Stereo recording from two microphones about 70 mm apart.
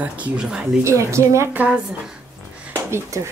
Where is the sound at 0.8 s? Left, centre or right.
Right.